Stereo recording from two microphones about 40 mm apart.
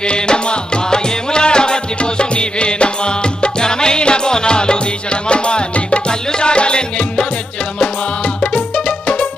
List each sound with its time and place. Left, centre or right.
0.1 s music: left
8.4 s music: left